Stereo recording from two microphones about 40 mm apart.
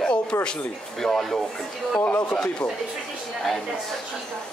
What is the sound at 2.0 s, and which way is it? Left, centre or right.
Speech, left.